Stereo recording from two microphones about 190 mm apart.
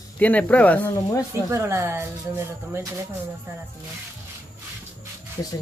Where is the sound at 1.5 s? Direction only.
15° right (ahead or behind).